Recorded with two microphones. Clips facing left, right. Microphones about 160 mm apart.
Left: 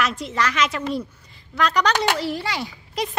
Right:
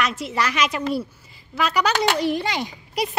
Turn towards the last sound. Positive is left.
turn(degrees=-20)  # may be behind; listen again after turning